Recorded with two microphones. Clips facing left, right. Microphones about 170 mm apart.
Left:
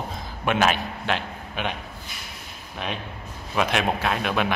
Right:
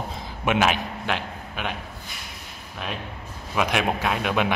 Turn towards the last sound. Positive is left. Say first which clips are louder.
# right 1 dB
turn(degrees=-15)  # may be behind; listen again after turning